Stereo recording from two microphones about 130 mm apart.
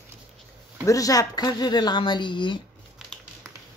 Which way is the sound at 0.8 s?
25° left (ahead or behind).